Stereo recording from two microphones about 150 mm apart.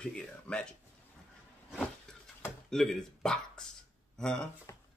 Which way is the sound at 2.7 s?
5° left (ahead or behind).